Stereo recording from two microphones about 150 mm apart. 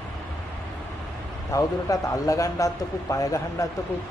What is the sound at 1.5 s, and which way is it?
A man's voice, 20° left (ahead or behind).